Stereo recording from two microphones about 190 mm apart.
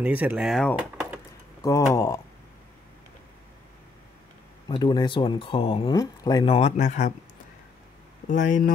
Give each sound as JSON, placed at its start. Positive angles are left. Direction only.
{"t": 0.0, "sound": "speech", "side_deg": -10}
{"t": 1.6, "sound": "speech", "side_deg": 15}
{"t": 4.6, "sound": "speech", "side_deg": 25}
{"t": 8.3, "sound": "speech", "side_deg": 40}